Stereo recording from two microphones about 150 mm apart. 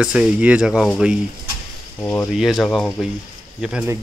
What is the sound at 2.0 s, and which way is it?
Speech, 15° left (ahead or behind).